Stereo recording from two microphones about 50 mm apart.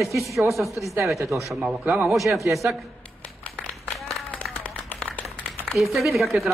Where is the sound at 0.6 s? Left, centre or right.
Centre.